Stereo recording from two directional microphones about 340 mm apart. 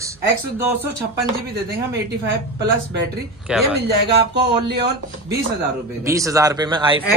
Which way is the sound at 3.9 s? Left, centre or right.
Right.